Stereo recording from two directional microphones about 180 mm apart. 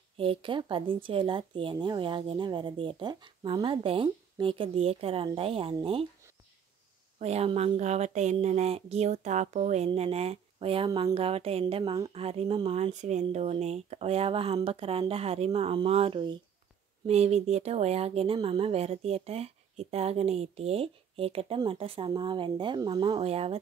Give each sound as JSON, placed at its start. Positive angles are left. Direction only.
{"t": 0.2, "sound": "speech", "side_deg": -30}
{"t": 7.2, "sound": "speech", "side_deg": -35}